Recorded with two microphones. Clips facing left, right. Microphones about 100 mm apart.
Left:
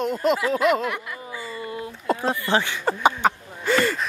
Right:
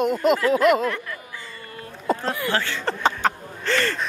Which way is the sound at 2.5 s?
15° left (ahead or behind).